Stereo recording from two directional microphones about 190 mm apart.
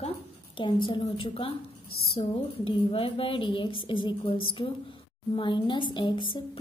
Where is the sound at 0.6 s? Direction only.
25° left (ahead or behind).